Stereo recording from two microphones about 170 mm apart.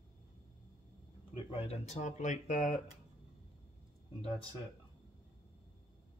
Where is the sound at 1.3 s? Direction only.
35° left (ahead or behind).